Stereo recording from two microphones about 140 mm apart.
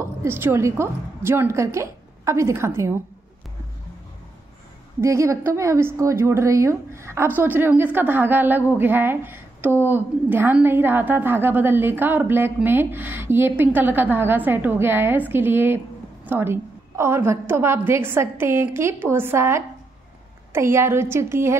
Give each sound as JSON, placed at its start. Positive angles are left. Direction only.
{"t": 0.0, "sound": "a woman's voice", "side_deg": -20}
{"t": 5.0, "sound": "a woman's voice", "side_deg": -20}